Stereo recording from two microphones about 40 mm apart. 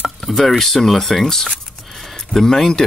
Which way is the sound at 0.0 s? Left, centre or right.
Centre.